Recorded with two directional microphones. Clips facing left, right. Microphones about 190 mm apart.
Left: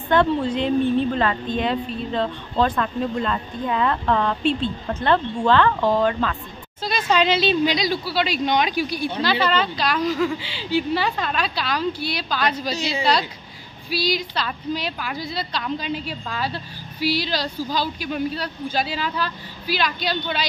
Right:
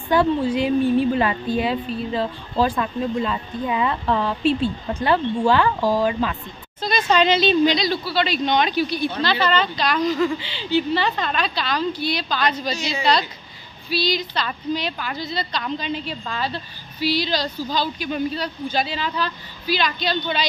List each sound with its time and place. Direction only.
0.1 s a woman's voice: 5° right (ahead or behind)
6.8 s a woman's voice: 5° left (ahead or behind)
12.7 s speech: 30° left (ahead or behind)
13.8 s a woman's voice: 10° left (ahead or behind)